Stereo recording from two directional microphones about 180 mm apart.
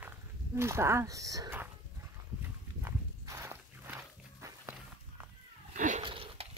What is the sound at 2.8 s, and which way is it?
Walk, 15° right (ahead or behind).